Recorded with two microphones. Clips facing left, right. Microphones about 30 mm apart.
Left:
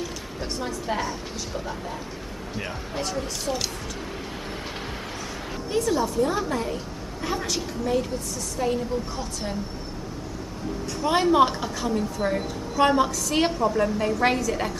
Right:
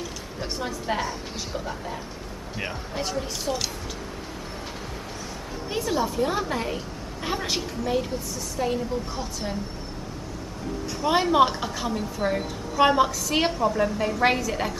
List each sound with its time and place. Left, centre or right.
0.0 s a woman's voice: centre
5.7 s a woman's voice: centre
7.8 s a woman's voice: centre
11.0 s a woman's voice: centre